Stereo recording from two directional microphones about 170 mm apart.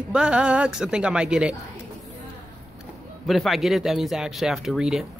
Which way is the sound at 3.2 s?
Centre (ahead or behind).